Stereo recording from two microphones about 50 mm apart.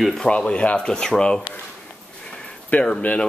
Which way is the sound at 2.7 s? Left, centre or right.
Left.